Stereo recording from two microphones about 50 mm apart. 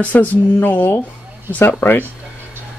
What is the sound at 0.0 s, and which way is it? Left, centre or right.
Speech, left.